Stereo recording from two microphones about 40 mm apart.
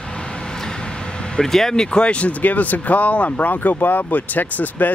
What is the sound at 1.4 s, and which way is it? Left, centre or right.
Speech, centre.